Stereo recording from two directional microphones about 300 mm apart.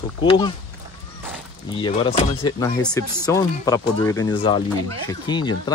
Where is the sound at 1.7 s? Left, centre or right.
Centre.